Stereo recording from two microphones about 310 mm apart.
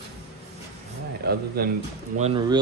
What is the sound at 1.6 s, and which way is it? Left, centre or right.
Speech, right.